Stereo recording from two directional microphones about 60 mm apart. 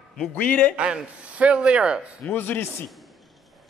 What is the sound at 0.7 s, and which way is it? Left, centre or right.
A man's voice, centre.